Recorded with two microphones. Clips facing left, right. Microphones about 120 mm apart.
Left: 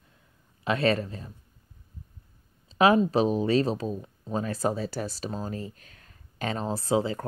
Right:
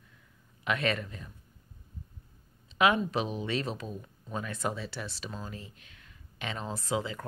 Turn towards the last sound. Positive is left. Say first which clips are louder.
# left 7 dB
turn(degrees=35)  # may be behind; listen again after turning